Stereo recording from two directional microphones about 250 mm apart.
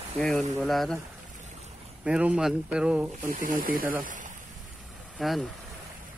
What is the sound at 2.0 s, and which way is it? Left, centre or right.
Speech, centre.